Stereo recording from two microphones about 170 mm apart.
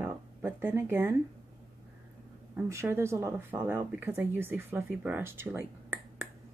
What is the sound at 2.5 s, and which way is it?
Speech, 15° right (ahead or behind).